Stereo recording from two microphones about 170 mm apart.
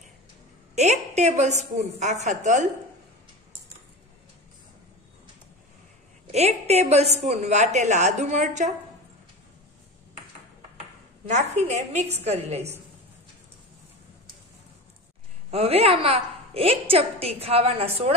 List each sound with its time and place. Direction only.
0.7 s a woman's voice: 40° right (ahead or behind)
6.3 s a woman's voice: 40° right (ahead or behind)
11.2 s a woman's voice: 40° right (ahead or behind)
15.5 s a woman's voice: 35° right (ahead or behind)